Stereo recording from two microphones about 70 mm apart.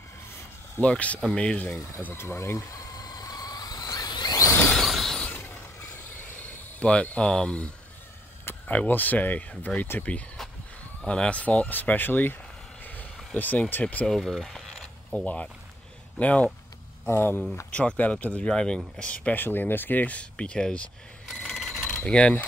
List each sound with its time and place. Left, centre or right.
0.7 s speech: centre
2.1 s speech: left
3.0 s vehicle: left
4.7 s a sound: centre
6.4 s speech: centre
8.5 s speech: left
12.8 s vehicle: left
14.0 s a sound: centre
15.1 s speech: centre
17.1 s speech: left
17.7 s speech: left
21.3 s bicycle bell: centre
22.0 s speech: centre